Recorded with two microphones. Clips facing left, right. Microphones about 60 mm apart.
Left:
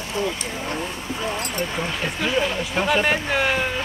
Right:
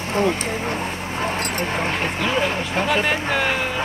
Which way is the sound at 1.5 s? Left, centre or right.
Right.